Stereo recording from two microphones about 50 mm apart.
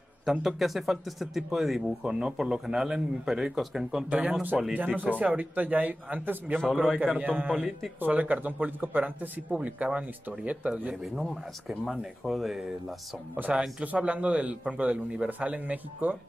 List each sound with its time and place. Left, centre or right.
0.2 s speech: centre
4.1 s a man's voice: right
11.8 s speech: centre
13.5 s a man's voice: right